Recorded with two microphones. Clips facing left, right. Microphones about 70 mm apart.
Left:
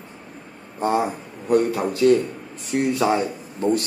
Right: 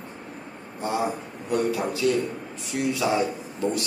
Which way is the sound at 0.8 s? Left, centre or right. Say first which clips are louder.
Left 5 dB; left.